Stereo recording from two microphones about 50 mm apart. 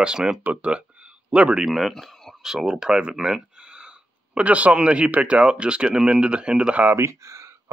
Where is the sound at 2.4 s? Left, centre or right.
Centre.